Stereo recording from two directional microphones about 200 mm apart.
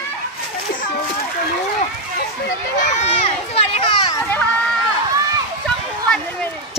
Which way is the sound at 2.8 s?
35° left (ahead or behind).